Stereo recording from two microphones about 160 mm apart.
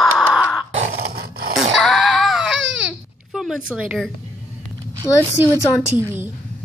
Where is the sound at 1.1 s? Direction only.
75° right (ahead or behind).